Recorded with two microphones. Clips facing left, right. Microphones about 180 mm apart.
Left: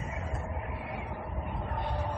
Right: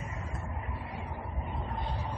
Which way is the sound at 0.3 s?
60° left (ahead or behind).